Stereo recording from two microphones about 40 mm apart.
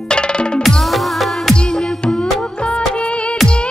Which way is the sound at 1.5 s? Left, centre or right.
Left.